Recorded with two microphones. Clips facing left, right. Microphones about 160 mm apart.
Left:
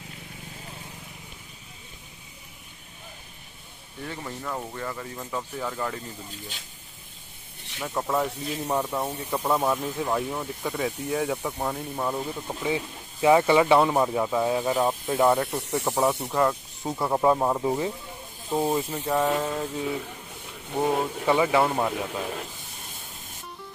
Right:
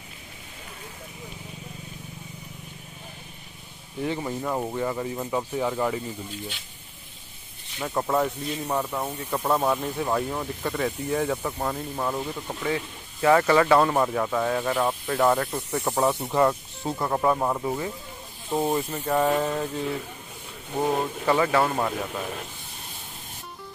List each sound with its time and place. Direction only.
4.0 s speech: 20° right (ahead or behind)
7.9 s speech: 10° right (ahead or behind)
8.6 s speech: 10° left (ahead or behind)
15.8 s speech: 5° left (ahead or behind)
17.1 s speech: 15° left (ahead or behind)
18.5 s speech: centre (ahead or behind)